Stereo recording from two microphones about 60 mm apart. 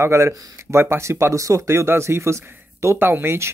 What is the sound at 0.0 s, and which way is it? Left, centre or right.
Speech, right.